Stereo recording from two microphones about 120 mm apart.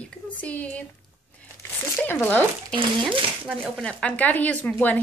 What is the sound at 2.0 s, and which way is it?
Speech, 10° left (ahead or behind).